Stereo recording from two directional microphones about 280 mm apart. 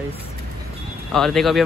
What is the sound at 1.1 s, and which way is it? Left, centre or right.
Speech, centre.